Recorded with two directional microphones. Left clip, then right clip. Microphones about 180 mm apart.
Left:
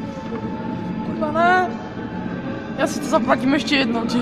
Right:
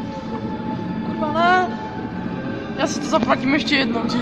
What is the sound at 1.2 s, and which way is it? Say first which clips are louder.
Music: even; 45° left (ahead or behind).